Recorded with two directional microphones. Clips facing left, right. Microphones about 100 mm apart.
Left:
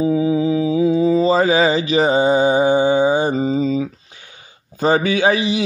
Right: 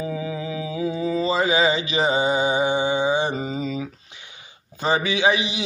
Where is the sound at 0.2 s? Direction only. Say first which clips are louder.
Left 12 dB; 25° left (ahead or behind).